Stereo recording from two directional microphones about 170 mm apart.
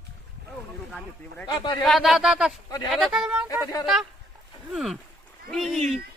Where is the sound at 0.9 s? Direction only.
Centre (ahead or behind).